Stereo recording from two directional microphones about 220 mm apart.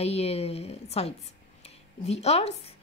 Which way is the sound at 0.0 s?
30° left (ahead or behind).